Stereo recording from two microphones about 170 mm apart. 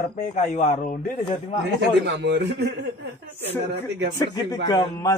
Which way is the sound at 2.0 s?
90° right.